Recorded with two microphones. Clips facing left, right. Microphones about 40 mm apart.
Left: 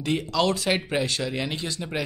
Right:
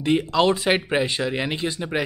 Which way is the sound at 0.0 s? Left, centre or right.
Right.